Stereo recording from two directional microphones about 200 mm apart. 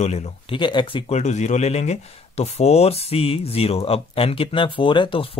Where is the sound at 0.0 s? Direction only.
35° left (ahead or behind).